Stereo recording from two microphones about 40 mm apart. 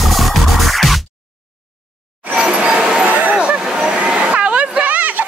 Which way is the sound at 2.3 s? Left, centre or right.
Right.